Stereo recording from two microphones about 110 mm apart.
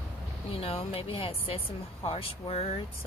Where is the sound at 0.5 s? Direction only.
60° left (ahead or behind).